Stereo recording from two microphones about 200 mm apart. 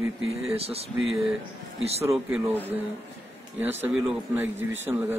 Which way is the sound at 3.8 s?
10° right (ahead or behind).